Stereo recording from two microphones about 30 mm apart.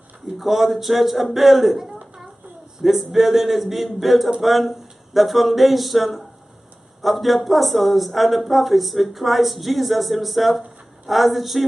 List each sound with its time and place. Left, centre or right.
0.2 s speech: centre